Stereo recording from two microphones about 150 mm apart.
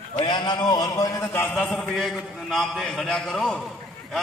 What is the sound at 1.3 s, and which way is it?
Speech, 10° left (ahead or behind).